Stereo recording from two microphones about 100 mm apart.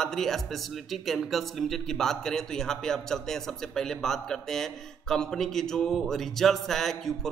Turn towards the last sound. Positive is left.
turn(degrees=5)  # may be behind; listen again after turning